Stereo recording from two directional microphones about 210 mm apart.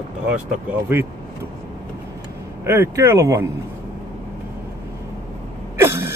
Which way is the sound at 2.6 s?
10° right (ahead or behind).